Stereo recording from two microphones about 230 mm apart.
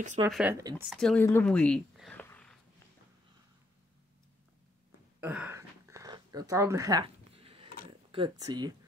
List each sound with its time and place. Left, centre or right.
0.3 s speech: centre
0.8 s speech: centre
5.2 s a sound: centre; by 7.7 s right
8.1 s speech: centre